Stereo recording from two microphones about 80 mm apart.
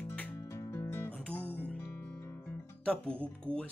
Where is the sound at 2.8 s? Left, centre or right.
Centre.